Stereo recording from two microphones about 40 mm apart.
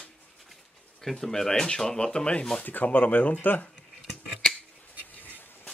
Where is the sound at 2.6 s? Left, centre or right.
Left.